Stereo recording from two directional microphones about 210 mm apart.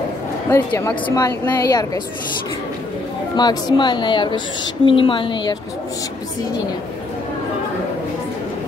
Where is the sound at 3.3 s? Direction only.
20° left (ahead or behind).